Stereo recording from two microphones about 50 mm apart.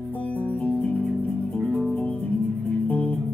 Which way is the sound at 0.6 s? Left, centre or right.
Left.